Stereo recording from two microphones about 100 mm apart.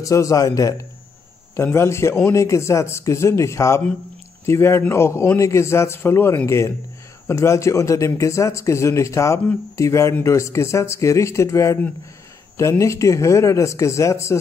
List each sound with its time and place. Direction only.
0.0 s a man's voice: 35° left (ahead or behind)